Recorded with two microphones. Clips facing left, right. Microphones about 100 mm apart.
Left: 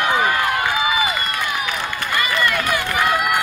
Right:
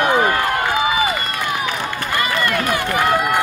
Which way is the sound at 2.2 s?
20° right (ahead or behind).